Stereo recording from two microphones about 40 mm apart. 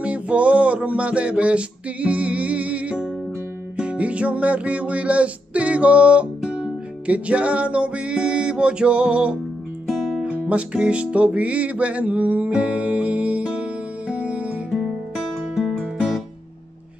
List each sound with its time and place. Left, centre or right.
0.0 s a sound: right
3.7 s music: right
9.8 s music: centre
10.2 s music: right
15.7 s music: centre